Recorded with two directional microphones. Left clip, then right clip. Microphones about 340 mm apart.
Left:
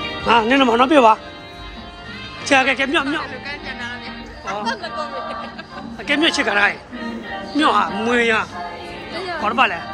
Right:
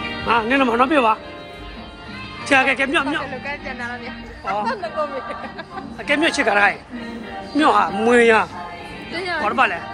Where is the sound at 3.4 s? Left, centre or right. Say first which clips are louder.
Right 1 dB; centre.